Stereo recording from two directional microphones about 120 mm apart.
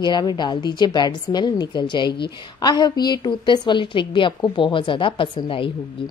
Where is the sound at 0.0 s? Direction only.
35° left (ahead or behind).